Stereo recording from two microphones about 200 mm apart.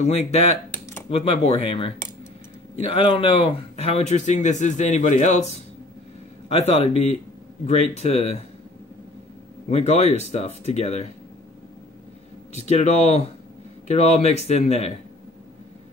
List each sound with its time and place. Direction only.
0.0 s speech: 30° left (ahead or behind)
9.7 s speech: 35° left (ahead or behind)
12.6 s speech: 35° left (ahead or behind)